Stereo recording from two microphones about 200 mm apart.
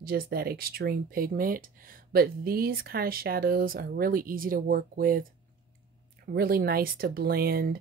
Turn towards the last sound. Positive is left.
turn(degrees=-50)  # may be behind; listen again after turning